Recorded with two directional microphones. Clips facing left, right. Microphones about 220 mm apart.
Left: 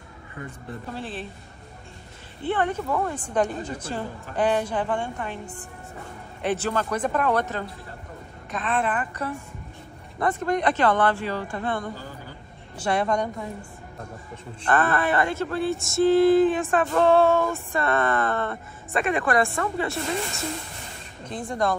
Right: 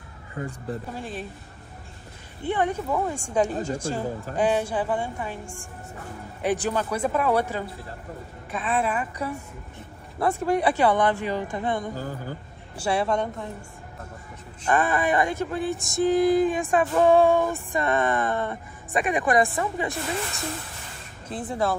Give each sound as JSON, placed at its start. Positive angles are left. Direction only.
{"t": 0.9, "sound": "music", "side_deg": -10}
{"t": 2.4, "sound": "music", "side_deg": -10}
{"t": 8.5, "sound": "speech", "side_deg": -5}
{"t": 10.1, "sound": "music", "side_deg": -5}
{"t": 11.9, "sound": "a woman's voice", "side_deg": -45}
{"t": 12.7, "sound": "speech", "side_deg": -10}
{"t": 14.6, "sound": "music", "side_deg": -10}
{"t": 21.3, "sound": "speech", "side_deg": -5}